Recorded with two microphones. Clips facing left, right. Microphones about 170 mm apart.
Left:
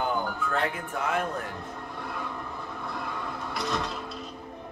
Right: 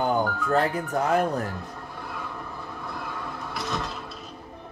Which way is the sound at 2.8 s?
Centre (ahead or behind).